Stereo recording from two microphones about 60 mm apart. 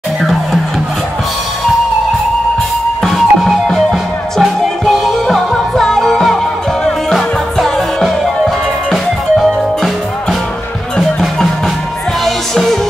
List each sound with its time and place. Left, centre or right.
0.2 s music: centre
3.0 s music: centre
11.0 s music: centre